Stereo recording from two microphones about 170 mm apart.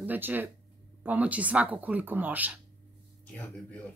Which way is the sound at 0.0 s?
10° right (ahead or behind).